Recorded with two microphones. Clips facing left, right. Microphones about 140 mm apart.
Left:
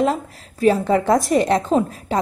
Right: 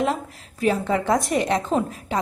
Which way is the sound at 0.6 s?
35° left (ahead or behind).